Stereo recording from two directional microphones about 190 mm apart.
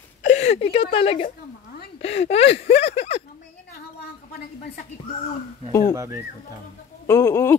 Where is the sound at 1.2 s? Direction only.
50° left (ahead or behind).